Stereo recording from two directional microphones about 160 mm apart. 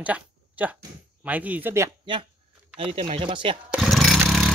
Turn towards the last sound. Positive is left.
turn(degrees=0)  # may be behind; listen again after turning